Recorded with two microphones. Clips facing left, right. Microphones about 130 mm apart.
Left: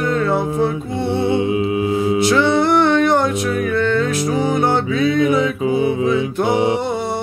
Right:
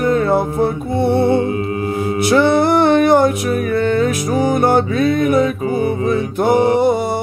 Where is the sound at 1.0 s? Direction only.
50° right (ahead or behind).